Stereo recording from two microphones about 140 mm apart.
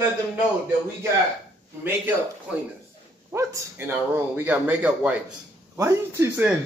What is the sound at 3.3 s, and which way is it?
Speech, 20° right (ahead or behind).